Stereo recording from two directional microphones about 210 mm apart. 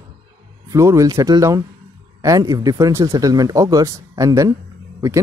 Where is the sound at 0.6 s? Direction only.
15° right (ahead or behind).